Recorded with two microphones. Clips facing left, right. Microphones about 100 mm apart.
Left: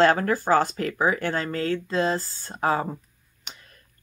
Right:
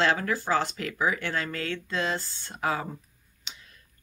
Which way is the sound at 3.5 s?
50° left (ahead or behind).